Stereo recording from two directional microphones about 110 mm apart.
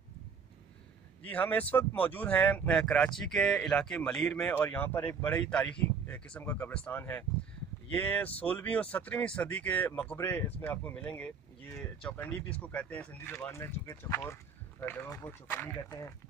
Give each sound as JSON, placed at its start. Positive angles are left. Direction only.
{"t": 1.2, "sound": "speech", "side_deg": 15}